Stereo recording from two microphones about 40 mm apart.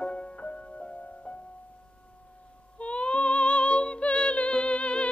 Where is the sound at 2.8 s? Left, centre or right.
Left.